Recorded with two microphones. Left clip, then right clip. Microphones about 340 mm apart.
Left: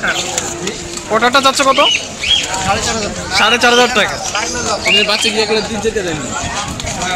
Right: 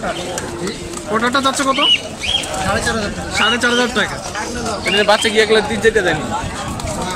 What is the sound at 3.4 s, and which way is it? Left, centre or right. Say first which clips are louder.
Speech: left 6 dB; centre.